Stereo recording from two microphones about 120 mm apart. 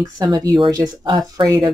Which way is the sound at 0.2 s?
35° right (ahead or behind).